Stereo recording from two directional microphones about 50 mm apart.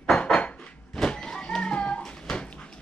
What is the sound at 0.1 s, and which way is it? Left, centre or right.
Dishes, left.